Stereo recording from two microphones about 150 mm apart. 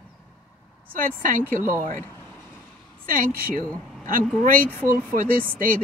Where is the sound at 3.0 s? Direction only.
65° right (ahead or behind).